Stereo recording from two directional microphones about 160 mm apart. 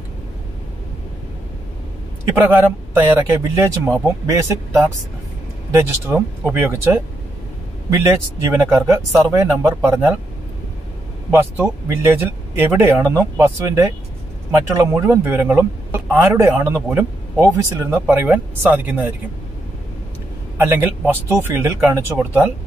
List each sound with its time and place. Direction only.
2.3 s speech: 15° right (ahead or behind)
8.0 s speech: 15° right (ahead or behind)
11.2 s speech: 5° right (ahead or behind)
12.0 s speech: 15° right (ahead or behind)
20.5 s speech: 10° right (ahead or behind)